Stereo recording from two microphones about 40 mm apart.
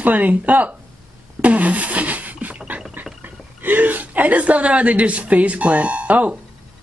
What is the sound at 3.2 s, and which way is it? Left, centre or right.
Speech, right.